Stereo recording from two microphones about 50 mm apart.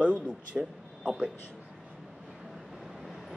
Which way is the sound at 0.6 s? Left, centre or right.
Centre.